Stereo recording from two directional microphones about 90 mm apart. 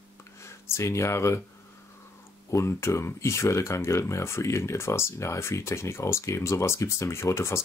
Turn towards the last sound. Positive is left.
turn(degrees=30)  # may be behind; listen again after turning